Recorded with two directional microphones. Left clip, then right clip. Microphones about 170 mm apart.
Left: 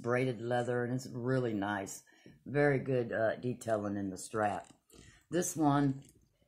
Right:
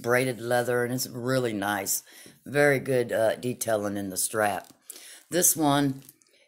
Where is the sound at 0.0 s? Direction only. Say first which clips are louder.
Right 8 dB; 25° right (ahead or behind).